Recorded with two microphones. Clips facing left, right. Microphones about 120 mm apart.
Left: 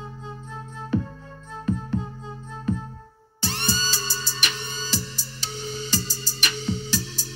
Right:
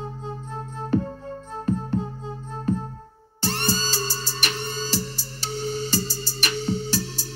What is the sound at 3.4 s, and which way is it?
Music, 40° right (ahead or behind).